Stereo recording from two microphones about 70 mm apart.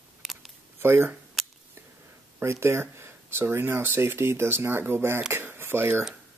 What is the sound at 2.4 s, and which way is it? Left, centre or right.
Speech, right.